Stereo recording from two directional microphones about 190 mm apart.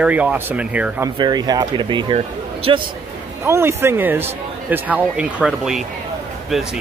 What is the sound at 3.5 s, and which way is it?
Speech, 15° right (ahead or behind).